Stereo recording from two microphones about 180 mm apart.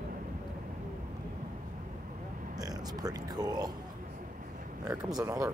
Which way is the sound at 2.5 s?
20° right (ahead or behind).